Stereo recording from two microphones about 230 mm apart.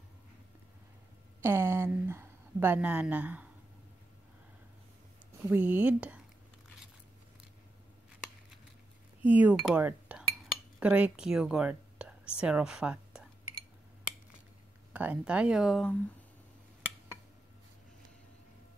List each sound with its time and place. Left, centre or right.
1.4 s a woman's voice: centre
5.4 s speech: centre
9.2 s a woman's voice: centre
14.9 s speech: centre